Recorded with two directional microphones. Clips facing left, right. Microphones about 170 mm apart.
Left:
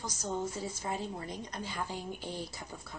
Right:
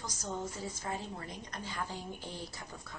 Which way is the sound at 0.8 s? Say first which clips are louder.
Left 3 dB; 20° left (ahead or behind).